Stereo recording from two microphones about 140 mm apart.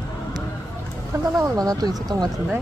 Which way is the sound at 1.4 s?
25° right (ahead or behind).